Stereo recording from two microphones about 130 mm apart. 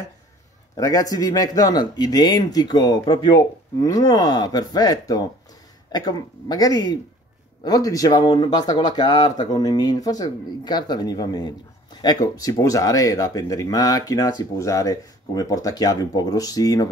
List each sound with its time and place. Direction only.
0.7 s speech: 25° left (ahead or behind)